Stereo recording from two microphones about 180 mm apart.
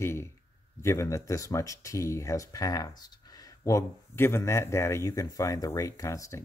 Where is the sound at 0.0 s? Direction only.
15° left (ahead or behind).